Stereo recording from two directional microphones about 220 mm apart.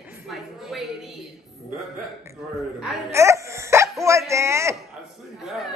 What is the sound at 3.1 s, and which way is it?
Hiccup, 15° right (ahead or behind).